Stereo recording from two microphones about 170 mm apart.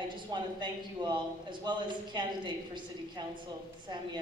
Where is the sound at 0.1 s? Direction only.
25° right (ahead or behind).